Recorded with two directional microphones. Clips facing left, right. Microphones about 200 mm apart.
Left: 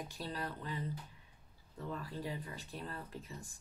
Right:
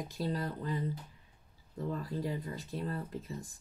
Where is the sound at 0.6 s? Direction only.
35° right (ahead or behind).